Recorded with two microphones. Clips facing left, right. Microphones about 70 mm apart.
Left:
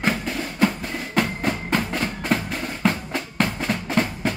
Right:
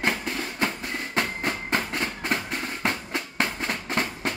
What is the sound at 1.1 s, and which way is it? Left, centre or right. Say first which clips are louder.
Music: left 5 dB; centre.